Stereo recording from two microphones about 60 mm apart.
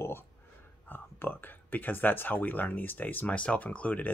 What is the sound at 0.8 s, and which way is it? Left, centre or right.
Speech, left.